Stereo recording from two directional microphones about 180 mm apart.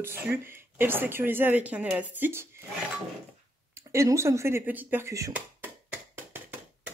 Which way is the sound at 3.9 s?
15° right (ahead or behind).